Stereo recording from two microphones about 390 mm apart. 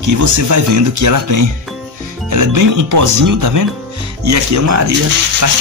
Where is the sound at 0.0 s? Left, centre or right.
Right.